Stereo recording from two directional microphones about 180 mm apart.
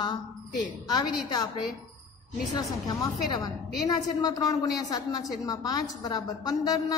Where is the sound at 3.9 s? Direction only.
20° left (ahead or behind).